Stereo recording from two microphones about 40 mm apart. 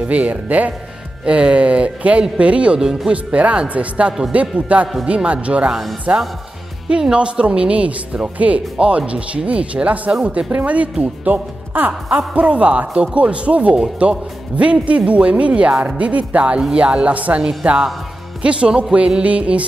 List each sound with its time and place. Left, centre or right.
0.0 s speech: right
1.2 s speech: right
18.4 s speech: right